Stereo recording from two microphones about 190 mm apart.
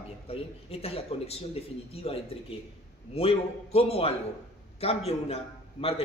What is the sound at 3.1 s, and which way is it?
A man's voice, 30° left (ahead or behind).